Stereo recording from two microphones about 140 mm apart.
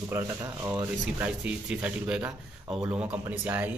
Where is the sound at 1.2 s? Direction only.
10° right (ahead or behind).